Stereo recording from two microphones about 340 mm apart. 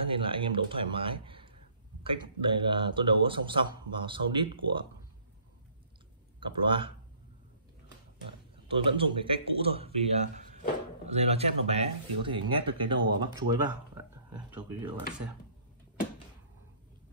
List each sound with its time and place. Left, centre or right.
0.0 s speech: centre
1.2 s a sound: centre
2.0 s speech: centre
6.4 s speech: centre
8.6 s speech: centre